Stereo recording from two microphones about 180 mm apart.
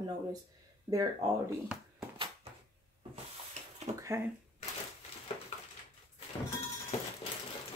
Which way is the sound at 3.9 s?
40° right (ahead or behind).